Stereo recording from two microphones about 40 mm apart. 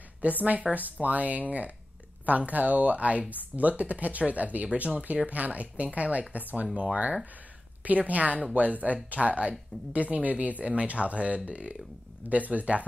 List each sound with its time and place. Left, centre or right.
0.2 s speech: right